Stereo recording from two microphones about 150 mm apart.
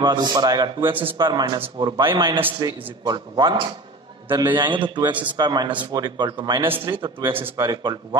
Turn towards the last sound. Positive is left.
turn(degrees=-25)  # may be behind; listen again after turning